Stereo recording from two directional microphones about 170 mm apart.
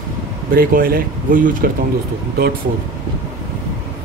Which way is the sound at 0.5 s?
60° right (ahead or behind).